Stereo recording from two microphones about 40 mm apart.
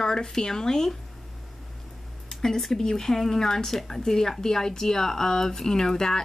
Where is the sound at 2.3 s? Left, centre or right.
Centre.